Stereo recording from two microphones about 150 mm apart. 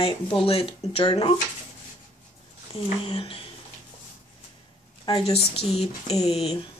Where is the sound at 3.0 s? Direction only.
40° left (ahead or behind).